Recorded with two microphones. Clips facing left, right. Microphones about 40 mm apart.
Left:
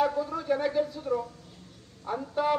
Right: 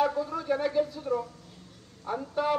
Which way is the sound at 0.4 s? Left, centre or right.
Centre.